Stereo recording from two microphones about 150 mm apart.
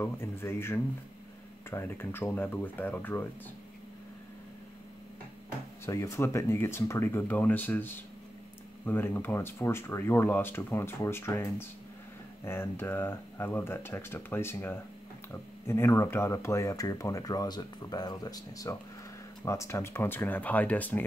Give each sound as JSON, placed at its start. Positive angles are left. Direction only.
{"t": 0.0, "sound": "speech", "side_deg": 15}
{"t": 5.9, "sound": "speech", "side_deg": 20}